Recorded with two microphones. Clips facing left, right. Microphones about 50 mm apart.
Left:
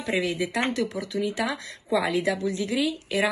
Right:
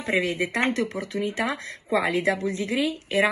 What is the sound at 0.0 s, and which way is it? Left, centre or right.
Speech, right.